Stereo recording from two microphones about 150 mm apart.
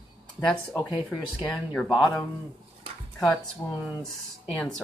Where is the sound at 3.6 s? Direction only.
20° left (ahead or behind).